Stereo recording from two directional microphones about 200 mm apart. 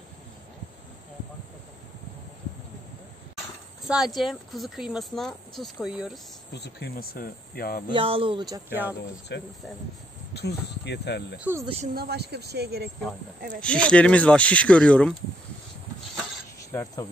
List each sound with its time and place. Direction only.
3.8 s speech: centre (ahead or behind)
6.5 s speech: 55° left (ahead or behind)
7.9 s speech: 25° right (ahead or behind)
9.3 s speech: 55° left (ahead or behind)
11.3 s speech: 10° right (ahead or behind)
11.8 s a woman's voice: 50° right (ahead or behind)
13.6 s speech: 5° left (ahead or behind)
16.7 s cricket: 15° left (ahead or behind)